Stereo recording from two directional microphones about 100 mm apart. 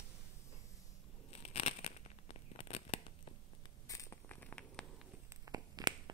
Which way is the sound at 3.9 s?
30° left (ahead or behind).